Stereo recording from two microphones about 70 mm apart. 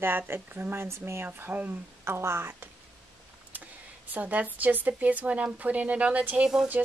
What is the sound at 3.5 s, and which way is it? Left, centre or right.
Speech, right.